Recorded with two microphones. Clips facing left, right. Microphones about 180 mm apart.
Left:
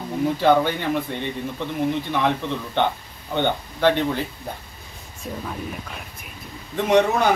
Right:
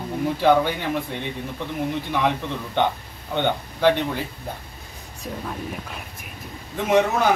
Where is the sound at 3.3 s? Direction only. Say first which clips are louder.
Left 1 dB; 5° right (ahead or behind).